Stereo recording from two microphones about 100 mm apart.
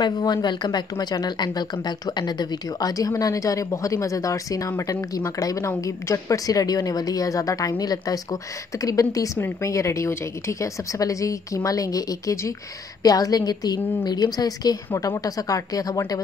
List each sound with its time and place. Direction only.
0.0 s a woman's voice: 45° left (ahead or behind)